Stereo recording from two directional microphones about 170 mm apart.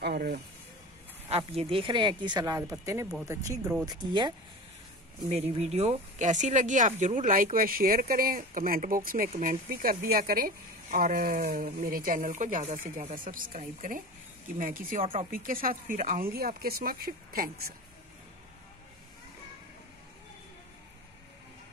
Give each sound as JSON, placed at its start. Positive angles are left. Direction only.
{"t": 0.0, "sound": "speech", "side_deg": -65}
{"t": 1.3, "sound": "speech", "side_deg": -35}
{"t": 5.3, "sound": "a woman's voice", "side_deg": -40}